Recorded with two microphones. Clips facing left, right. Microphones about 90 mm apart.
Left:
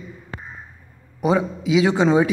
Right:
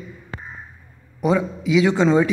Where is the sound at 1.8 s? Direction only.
15° left (ahead or behind).